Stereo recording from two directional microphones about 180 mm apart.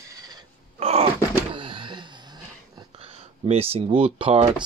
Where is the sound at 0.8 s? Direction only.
35° right (ahead or behind).